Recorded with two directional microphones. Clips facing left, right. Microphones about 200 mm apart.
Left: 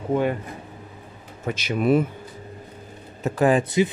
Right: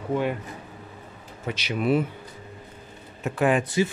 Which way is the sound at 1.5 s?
50° left (ahead or behind).